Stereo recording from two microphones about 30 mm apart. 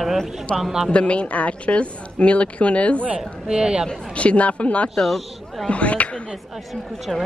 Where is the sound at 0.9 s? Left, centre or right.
Left.